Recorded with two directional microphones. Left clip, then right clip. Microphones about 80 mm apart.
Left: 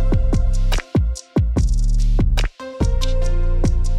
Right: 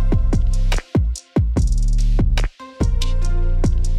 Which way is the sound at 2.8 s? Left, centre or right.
Right.